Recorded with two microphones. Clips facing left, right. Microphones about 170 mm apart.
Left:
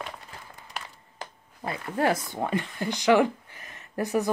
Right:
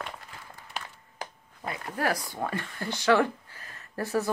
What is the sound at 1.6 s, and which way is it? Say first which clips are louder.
Speech: left 4 dB; 25° left (ahead or behind).